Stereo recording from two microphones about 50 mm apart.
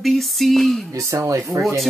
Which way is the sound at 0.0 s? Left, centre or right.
Centre.